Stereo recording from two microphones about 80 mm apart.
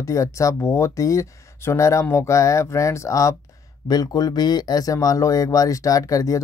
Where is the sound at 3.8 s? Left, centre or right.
Left.